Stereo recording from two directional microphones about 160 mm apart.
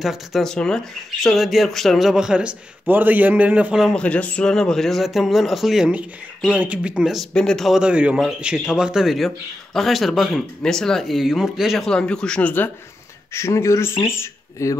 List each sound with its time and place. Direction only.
0.0 s speech: centre (ahead or behind); by 14.8 s 15° left (ahead or behind)